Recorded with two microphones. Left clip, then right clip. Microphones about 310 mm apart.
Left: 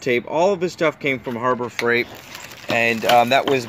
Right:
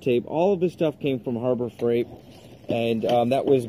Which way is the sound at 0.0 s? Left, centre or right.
Left.